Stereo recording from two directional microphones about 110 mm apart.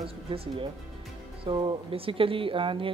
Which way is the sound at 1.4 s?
45° right (ahead or behind).